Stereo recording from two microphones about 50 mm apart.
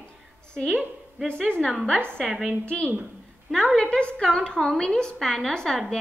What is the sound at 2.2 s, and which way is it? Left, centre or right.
A woman's voice, centre.